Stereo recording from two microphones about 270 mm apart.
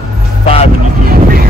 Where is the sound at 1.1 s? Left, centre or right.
Right.